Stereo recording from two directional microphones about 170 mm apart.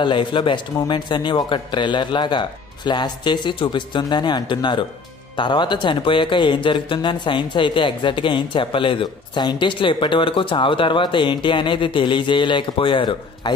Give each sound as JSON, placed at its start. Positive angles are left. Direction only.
{"t": 0.0, "sound": "speech", "side_deg": 30}